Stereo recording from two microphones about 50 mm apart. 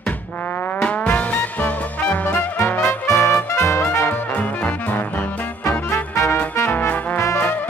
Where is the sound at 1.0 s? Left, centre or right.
Left.